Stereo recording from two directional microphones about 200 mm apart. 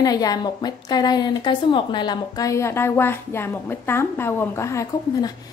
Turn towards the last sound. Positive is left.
turn(degrees=15)  # may be behind; listen again after turning